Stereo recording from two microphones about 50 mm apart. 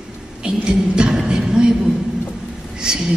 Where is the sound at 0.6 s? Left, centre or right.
Centre.